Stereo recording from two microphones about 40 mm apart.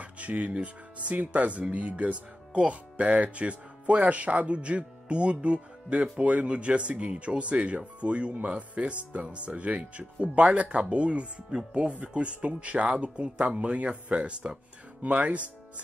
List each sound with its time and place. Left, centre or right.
0.0 s speech: right